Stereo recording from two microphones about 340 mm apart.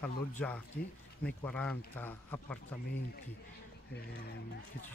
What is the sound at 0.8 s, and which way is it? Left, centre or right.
Speech, left.